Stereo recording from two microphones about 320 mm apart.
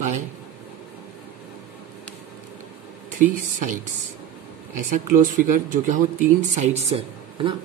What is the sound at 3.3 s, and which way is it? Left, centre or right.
Speech, right.